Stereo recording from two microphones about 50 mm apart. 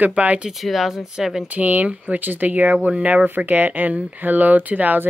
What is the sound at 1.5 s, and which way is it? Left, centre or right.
A woman's voice, right.